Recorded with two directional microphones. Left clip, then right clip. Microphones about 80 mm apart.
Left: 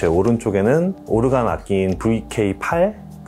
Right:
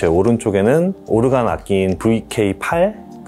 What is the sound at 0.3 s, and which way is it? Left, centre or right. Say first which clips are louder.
Speech: right 3 dB; right.